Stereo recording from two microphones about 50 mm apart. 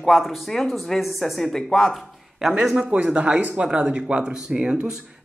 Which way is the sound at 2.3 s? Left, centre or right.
Centre.